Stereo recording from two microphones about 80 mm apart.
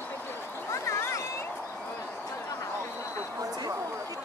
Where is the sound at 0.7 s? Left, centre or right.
Left.